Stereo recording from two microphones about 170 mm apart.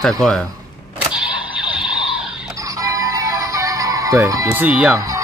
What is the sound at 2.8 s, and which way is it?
Music, 20° right (ahead or behind).